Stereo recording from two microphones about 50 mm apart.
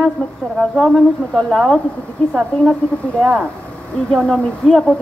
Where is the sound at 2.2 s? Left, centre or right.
Left.